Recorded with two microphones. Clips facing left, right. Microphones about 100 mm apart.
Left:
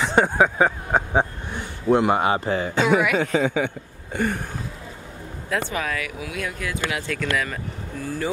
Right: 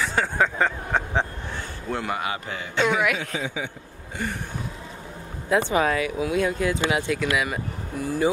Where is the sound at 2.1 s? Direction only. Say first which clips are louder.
Left 8 dB; 35° left (ahead or behind).